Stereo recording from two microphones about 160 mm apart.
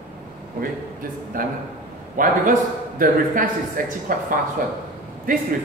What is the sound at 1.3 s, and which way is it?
Speech, 60° right (ahead or behind).